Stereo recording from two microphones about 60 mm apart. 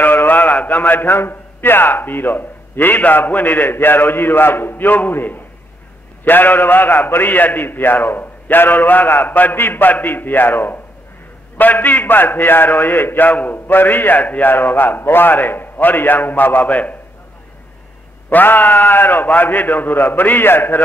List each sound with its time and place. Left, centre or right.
0.0 s a man's voice: left
18.3 s a man's voice: left